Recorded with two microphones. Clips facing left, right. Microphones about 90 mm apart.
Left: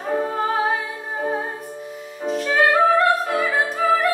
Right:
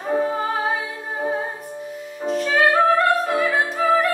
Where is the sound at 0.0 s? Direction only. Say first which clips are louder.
Right 1 dB; 5° right (ahead or behind).